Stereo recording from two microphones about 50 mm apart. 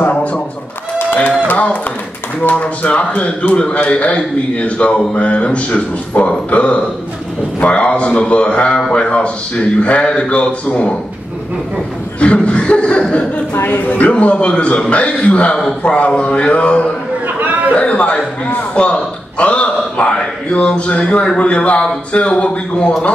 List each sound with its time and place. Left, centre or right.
0.1 s a sound: left
1.5 s a man's voice: left
12.2 s a man's voice: left
13.6 s a man's voice: left
13.8 s a man's voice: left
17.4 s a sound: right
17.7 s a man's voice: left